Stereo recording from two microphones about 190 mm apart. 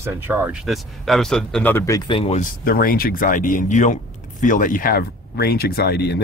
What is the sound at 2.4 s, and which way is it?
Speech, 50° left (ahead or behind).